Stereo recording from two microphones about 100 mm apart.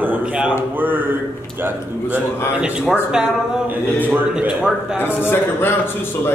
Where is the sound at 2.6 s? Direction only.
10° right (ahead or behind).